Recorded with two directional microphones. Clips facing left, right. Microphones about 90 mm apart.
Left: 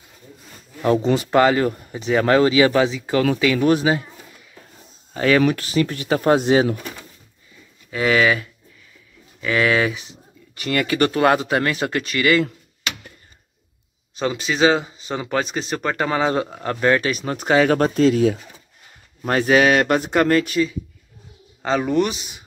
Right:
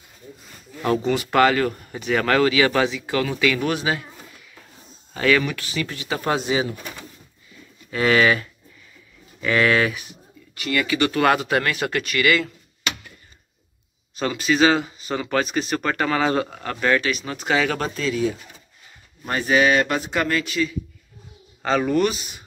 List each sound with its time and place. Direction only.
1.3 s speech: 25° left (ahead or behind)
5.1 s speech: 25° left (ahead or behind)
5.5 s speech: 45° left (ahead or behind)
6.4 s speech: 60° left (ahead or behind)
7.9 s speech: 5° left (ahead or behind)
9.9 s a sound: 25° left (ahead or behind)
10.6 s speech: 45° left (ahead or behind)
11.1 s speech: 25° left (ahead or behind)
14.1 s speech: 25° left (ahead or behind)
17.0 s speech: 40° left (ahead or behind)
17.7 s speech: 55° left (ahead or behind)
21.6 s speech: 15° left (ahead or behind)